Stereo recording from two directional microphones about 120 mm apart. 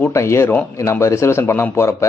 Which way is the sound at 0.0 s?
25° left (ahead or behind).